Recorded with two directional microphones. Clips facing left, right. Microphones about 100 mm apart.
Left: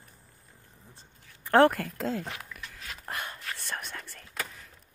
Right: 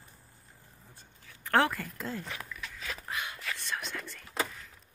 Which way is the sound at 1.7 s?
80° left.